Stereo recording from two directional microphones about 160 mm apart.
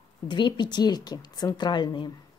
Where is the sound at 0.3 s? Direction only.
30° left (ahead or behind).